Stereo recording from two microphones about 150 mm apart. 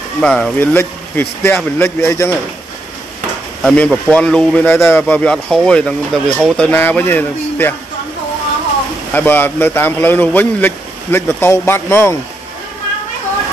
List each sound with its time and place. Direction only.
0.2 s speech: 5° left (ahead or behind)
3.6 s speech: 5° left (ahead or behind)
9.1 s speech: 10° left (ahead or behind)